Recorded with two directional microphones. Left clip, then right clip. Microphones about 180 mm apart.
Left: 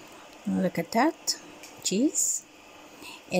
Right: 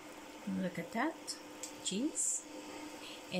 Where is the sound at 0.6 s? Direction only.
35° left (ahead or behind).